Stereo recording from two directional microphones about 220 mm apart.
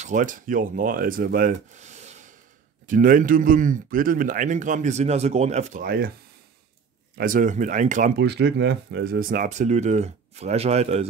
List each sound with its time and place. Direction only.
0.0 s a man's voice: 35° right (ahead or behind)
7.2 s a man's voice: 35° right (ahead or behind)
8.2 s a man's voice: 50° right (ahead or behind); by 11.1 s 30° right (ahead or behind)